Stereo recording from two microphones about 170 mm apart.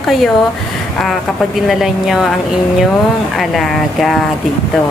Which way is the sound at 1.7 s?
Centre (ahead or behind).